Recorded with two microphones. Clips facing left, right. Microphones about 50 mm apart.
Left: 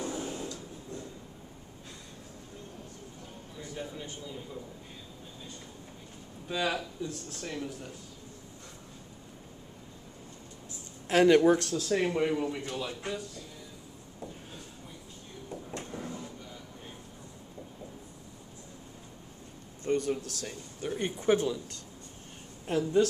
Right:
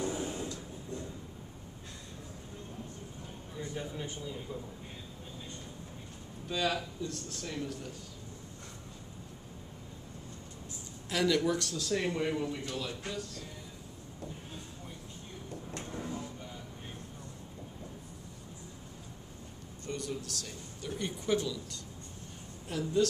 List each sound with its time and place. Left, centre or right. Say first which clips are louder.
0.1 s a sound: even; centre
6.5 s speech: left 1 dB; centre
11.1 s speech: left 8 dB; left
11.9 s speech: left 4 dB; centre
15.9 s vehicle: right 3 dB; centre
19.8 s a man's voice: left 9 dB; left
22.7 s speech: left 4 dB; left